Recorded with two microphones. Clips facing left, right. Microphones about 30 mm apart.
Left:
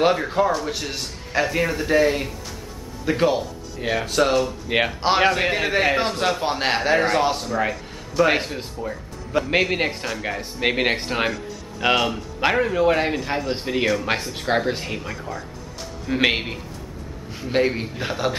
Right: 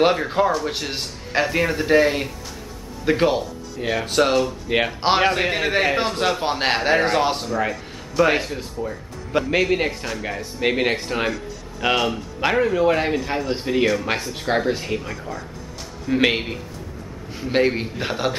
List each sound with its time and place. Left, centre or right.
0.0 s a man's voice: centre
1.4 s a man's voice: centre
3.7 s speech: centre
4.0 s a man's voice: centre
4.6 s a man's voice: centre
7.4 s a man's voice: centre
9.5 s a man's voice: centre
11.8 s a man's voice: centre
17.4 s a man's voice: centre